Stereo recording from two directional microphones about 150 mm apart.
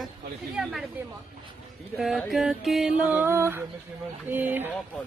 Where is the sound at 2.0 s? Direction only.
Centre (ahead or behind).